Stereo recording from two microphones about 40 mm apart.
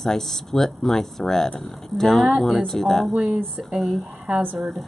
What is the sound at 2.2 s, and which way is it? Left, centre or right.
Speech, centre.